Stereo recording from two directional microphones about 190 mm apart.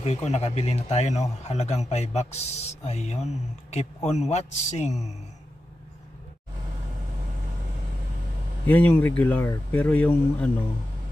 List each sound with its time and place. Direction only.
0.0 s a man's voice: 35° left (ahead or behind)
8.6 s speech: 10° left (ahead or behind)